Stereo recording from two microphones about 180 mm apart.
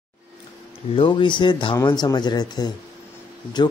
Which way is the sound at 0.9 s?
25° left (ahead or behind).